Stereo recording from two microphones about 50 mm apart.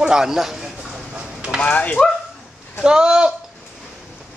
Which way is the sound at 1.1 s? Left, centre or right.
Right.